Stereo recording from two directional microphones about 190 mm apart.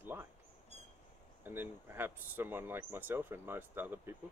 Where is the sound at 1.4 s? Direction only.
10° right (ahead or behind).